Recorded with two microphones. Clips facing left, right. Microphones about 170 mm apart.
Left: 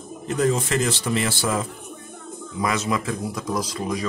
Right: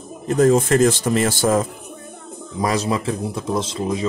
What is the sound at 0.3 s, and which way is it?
Speech, 45° right (ahead or behind).